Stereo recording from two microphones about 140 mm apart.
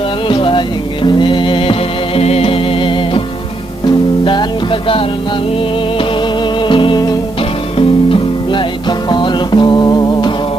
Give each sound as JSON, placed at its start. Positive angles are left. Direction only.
{"t": 0.3, "sound": "music", "side_deg": 35}
{"t": 4.2, "sound": "music", "side_deg": 35}
{"t": 6.7, "sound": "music", "side_deg": 35}